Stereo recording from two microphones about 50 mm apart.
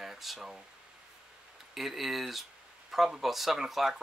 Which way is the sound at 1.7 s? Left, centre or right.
Centre.